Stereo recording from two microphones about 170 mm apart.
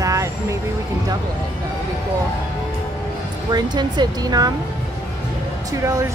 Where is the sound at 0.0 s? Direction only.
20° right (ahead or behind).